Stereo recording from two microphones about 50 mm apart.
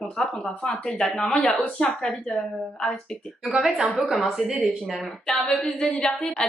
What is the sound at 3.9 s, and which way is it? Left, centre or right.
A woman's voice, centre.